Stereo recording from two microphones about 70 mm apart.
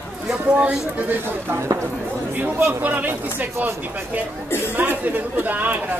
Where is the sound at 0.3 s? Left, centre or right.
Centre.